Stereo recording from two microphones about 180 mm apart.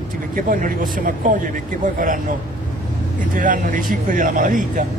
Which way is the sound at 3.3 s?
50° right (ahead or behind).